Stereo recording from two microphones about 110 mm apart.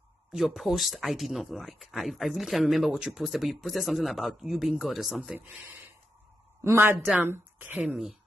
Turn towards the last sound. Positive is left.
turn(degrees=-15)  # may be behind; listen again after turning